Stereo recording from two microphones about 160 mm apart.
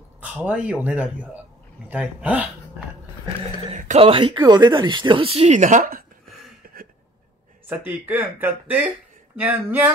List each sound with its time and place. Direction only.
0.2 s speech: 10° right (ahead or behind)
3.6 s a sound: 45° right (ahead or behind)
4.1 s speech: 30° right (ahead or behind); by 6.0 s 60° right (ahead or behind)
7.6 s speech: 10° right (ahead or behind)